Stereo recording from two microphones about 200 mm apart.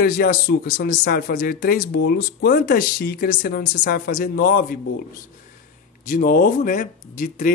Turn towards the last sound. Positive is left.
turn(degrees=40)  # may be behind; listen again after turning